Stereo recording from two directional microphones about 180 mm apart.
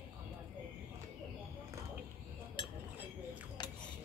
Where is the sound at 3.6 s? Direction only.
25° left (ahead or behind).